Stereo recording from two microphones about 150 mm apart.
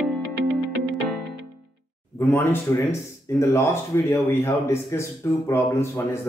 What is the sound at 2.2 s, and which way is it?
Speech, 15° left (ahead or behind).